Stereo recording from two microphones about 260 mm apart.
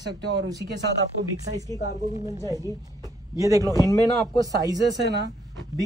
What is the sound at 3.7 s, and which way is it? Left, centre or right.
Speech, centre.